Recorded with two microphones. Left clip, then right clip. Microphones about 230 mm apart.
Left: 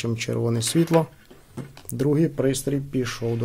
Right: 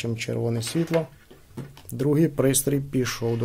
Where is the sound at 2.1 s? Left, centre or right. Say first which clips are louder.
Right 2 dB; centre.